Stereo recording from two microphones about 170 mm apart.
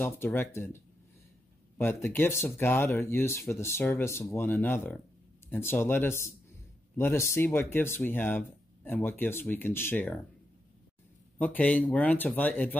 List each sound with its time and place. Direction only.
0.0 s speech: 10° left (ahead or behind)
11.3 s speech: 10° left (ahead or behind)